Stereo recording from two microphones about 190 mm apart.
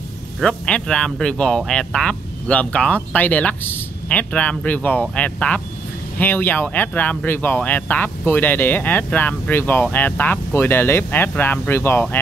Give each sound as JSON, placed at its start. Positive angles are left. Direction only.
{"t": 0.4, "sound": "speech", "side_deg": 5}